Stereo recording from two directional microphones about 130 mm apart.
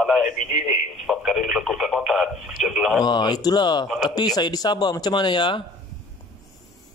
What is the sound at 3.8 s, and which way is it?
Speech, 5° right (ahead or behind).